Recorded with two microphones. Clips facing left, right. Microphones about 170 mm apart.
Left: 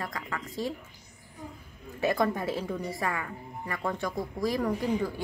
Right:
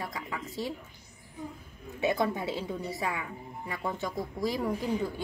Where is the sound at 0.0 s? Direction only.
20° right (ahead or behind).